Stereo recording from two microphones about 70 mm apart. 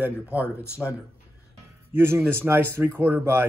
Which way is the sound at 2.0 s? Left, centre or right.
Right.